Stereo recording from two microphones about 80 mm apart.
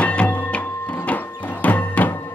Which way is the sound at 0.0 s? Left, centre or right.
Centre.